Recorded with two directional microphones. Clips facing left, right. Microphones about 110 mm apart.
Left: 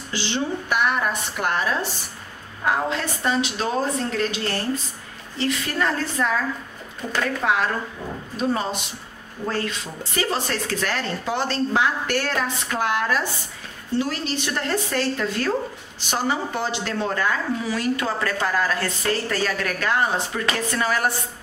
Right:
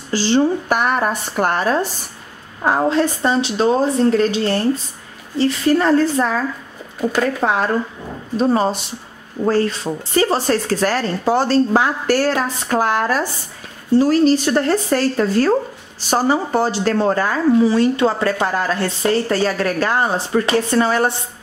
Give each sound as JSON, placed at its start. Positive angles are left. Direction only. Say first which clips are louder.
{"t": 0.1, "sound": "a woman's voice", "louder": "right 10 dB", "side_deg": -40}